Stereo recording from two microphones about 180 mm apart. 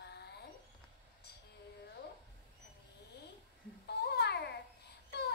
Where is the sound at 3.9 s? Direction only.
65° left (ahead or behind).